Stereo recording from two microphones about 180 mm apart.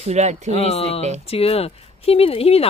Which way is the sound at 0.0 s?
40° right (ahead or behind).